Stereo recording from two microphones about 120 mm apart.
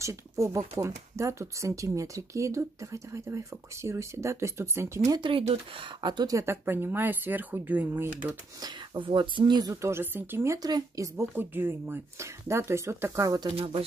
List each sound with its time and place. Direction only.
0.0 s speech: 25° right (ahead or behind)
5.2 s speech: 45° right (ahead or behind); by 8.3 s 15° right (ahead or behind)
8.5 s speech: 40° right (ahead or behind)
13.6 s speech: 50° right (ahead or behind)